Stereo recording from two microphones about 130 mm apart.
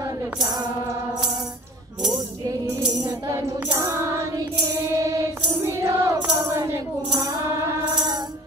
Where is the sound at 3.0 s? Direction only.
30° right (ahead or behind).